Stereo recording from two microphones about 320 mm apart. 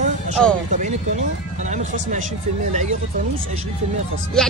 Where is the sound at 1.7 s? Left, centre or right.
Right.